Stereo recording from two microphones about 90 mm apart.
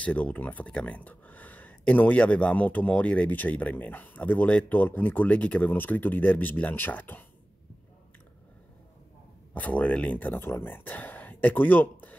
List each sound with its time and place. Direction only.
0.0 s speech: 15° left (ahead or behind)
9.5 s speech: 15° left (ahead or behind)